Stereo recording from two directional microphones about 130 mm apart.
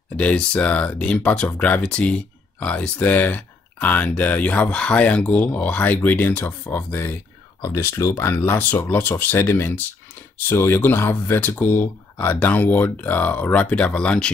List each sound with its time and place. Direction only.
0.2 s speech: 10° left (ahead or behind)